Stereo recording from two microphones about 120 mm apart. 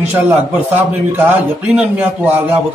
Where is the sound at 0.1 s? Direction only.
15° right (ahead or behind).